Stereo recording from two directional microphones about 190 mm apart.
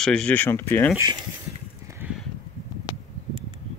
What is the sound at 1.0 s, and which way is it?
Speech, 20° right (ahead or behind).